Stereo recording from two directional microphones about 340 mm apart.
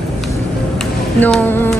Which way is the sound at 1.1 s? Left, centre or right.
Centre.